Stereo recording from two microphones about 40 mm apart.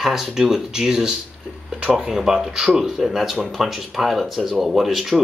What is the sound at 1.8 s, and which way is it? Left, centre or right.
Speech, right.